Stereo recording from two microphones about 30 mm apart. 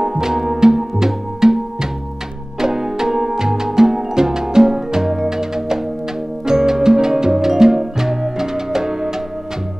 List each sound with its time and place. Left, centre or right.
0.0 s music: centre
2.6 s music: centre